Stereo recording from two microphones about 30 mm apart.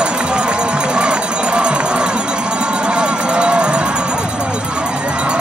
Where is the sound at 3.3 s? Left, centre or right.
Right.